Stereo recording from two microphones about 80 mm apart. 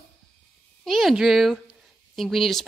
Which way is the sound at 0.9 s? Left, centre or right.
Centre.